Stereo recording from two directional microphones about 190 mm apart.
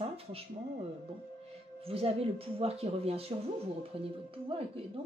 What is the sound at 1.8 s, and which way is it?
Speech, 30° right (ahead or behind).